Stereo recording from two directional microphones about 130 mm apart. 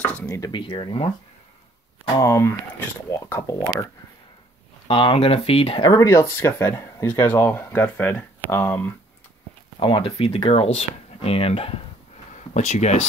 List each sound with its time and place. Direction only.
0.0 s a sound: 10° left (ahead or behind)
0.3 s speech: 35° left (ahead or behind)
2.1 s speech: 20° left (ahead or behind)
4.8 s speech: 45° left (ahead or behind); by 8.9 s 15° left (ahead or behind)
9.8 s speech: 40° left (ahead or behind)
12.5 s speech: 60° left (ahead or behind)